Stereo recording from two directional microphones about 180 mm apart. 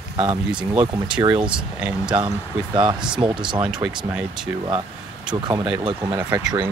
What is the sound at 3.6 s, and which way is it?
Speech, 5° right (ahead or behind).